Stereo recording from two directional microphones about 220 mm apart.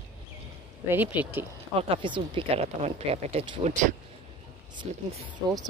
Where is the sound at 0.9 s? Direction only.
10° right (ahead or behind).